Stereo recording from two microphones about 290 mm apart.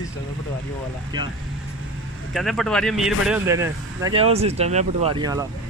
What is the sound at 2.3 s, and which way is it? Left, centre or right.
Speech, centre.